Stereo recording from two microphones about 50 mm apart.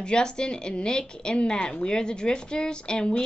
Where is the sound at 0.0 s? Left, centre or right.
Centre.